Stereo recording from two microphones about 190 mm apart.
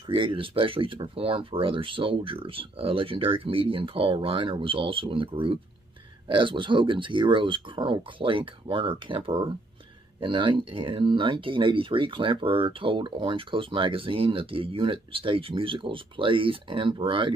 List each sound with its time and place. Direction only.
0.0 s speech: 25° right (ahead or behind)